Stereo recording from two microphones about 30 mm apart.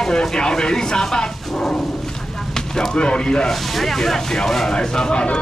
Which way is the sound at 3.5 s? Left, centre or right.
Centre.